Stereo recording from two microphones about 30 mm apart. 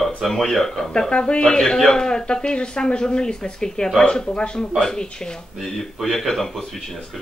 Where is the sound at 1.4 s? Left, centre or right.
Centre.